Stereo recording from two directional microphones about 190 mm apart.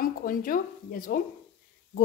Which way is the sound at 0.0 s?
50° left (ahead or behind).